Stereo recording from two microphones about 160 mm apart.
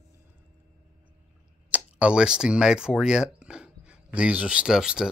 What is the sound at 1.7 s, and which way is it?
Speech, 5° right (ahead or behind).